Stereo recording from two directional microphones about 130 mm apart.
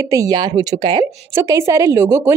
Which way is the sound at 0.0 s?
25° right (ahead or behind).